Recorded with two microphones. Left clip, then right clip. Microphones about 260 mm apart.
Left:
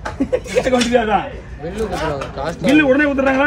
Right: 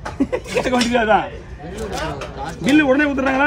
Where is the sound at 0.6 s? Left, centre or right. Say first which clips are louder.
Left 2 dB; right.